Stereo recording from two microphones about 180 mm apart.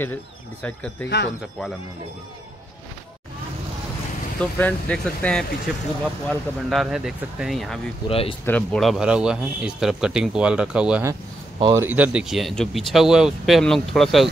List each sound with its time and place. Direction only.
0.0 s speech: 10° left (ahead or behind)
1.0 s speech: 75° left (ahead or behind)
4.4 s a man's voice: 10° left (ahead or behind)
8.1 s speech: 30° left (ahead or behind)
8.5 s a man's voice: 5° left (ahead or behind)